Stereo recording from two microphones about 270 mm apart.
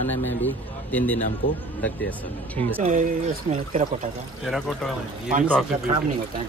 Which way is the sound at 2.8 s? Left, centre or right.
Right.